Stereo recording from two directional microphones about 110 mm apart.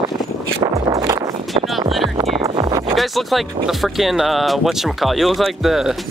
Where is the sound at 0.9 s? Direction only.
30° right (ahead or behind).